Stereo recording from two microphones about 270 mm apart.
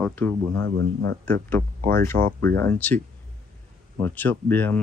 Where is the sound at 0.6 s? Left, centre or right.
Right.